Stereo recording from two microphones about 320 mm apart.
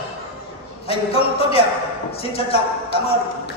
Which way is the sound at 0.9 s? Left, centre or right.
Centre.